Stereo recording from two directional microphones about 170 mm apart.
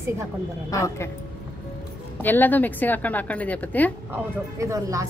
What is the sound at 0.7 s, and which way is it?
Speech, 15° left (ahead or behind).